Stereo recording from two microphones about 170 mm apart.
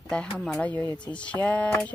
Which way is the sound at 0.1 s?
5° left (ahead or behind).